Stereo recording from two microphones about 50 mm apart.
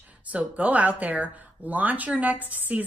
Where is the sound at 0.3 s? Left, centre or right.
Right.